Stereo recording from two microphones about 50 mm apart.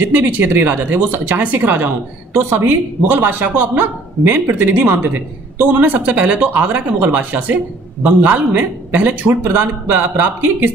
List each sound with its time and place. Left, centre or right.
0.1 s a man's voice: right